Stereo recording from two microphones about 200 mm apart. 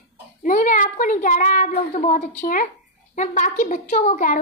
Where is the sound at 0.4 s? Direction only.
40° left (ahead or behind).